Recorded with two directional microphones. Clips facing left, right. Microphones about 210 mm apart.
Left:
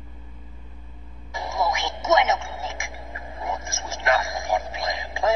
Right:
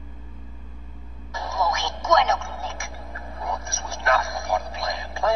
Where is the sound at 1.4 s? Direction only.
20° left (ahead or behind).